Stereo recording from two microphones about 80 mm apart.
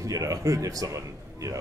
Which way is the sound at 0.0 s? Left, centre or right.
Right.